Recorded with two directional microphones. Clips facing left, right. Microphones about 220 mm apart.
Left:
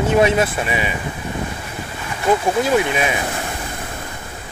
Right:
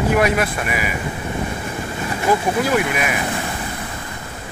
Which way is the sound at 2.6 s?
25° left (ahead or behind).